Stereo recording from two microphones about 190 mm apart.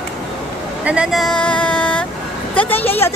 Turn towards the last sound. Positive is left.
turn(degrees=10)  # may be behind; listen again after turning